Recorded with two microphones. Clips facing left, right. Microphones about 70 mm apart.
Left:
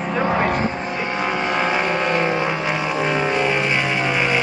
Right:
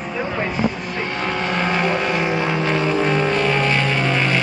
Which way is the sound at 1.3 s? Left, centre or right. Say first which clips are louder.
Left 1 dB; centre.